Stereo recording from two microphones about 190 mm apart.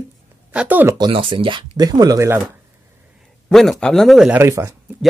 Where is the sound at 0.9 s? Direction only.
25° right (ahead or behind).